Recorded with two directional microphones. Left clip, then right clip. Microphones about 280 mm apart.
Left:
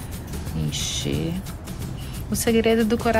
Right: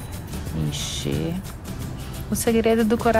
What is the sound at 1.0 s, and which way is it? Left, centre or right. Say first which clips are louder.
Speech: even; centre.